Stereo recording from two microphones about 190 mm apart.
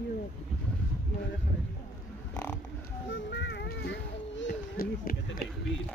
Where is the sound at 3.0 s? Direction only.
70° left (ahead or behind).